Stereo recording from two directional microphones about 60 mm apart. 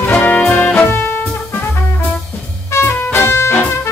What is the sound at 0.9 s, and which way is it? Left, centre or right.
Music, left.